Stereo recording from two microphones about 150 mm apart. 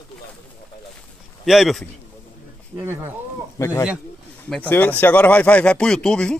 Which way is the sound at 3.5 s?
20° left (ahead or behind).